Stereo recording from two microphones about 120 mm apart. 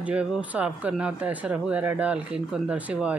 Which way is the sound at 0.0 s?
10° right (ahead or behind).